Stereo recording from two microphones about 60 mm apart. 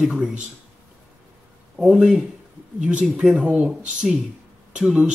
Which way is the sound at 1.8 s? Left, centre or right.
Centre.